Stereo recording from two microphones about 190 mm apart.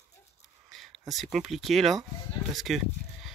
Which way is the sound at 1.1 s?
Centre (ahead or behind).